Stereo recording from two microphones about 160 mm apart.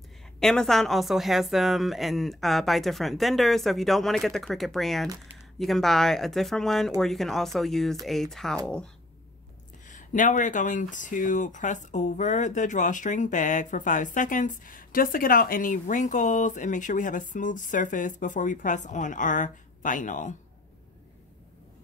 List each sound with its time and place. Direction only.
0.4 s a woman's voice: 5° left (ahead or behind)
9.8 s speech: 50° left (ahead or behind)